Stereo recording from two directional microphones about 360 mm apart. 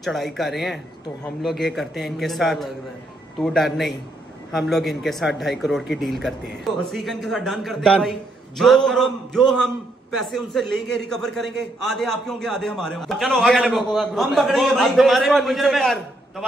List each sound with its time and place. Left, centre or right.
0.0 s a man's voice: centre